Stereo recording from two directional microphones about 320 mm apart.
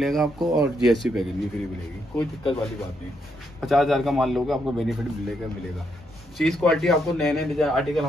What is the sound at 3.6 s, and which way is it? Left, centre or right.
A man's voice, centre.